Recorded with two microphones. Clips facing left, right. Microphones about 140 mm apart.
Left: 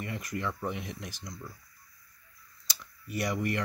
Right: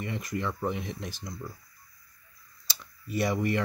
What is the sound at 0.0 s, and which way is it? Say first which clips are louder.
Speech: right 2 dB; 25° right (ahead or behind).